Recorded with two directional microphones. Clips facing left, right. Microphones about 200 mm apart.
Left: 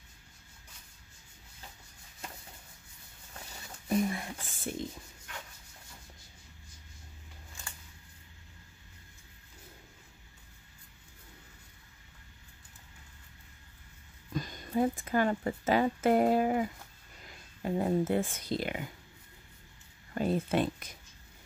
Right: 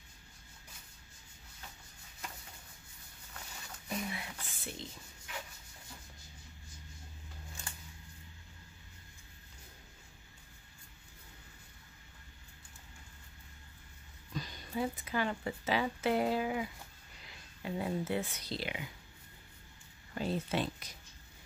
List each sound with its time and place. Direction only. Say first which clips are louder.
4.1 s whispering: left 5 dB; 45° left (ahead or behind)
14.3 s speech: left 7 dB; 50° left (ahead or behind)
20.2 s speech: left 5 dB; 50° left (ahead or behind)